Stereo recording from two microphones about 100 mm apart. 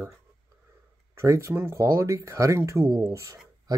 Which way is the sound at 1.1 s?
30° right (ahead or behind).